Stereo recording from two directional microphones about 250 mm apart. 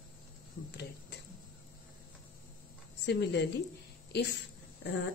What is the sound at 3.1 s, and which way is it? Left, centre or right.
A woman's voice, left.